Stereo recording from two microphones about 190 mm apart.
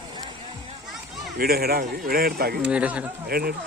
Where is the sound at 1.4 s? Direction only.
55° right (ahead or behind).